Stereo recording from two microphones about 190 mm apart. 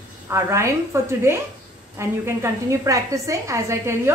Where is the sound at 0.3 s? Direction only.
15° right (ahead or behind).